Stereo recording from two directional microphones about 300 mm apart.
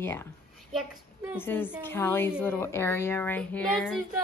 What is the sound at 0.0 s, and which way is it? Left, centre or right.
Speech, centre.